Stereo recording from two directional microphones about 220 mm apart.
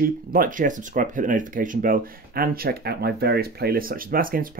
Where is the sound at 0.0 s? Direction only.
40° right (ahead or behind).